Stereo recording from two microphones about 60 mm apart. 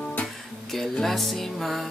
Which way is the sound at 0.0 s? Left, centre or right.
Left.